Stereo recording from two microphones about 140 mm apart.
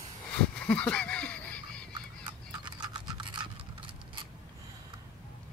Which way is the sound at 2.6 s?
30° right (ahead or behind).